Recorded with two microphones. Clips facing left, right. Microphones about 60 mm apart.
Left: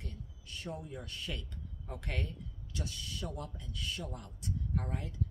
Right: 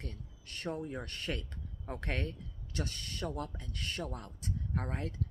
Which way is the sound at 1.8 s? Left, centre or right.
Right.